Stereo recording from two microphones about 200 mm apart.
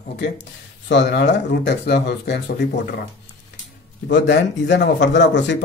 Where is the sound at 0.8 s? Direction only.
60° left (ahead or behind).